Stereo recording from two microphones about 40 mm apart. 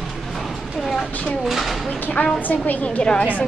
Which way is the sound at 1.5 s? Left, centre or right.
Centre.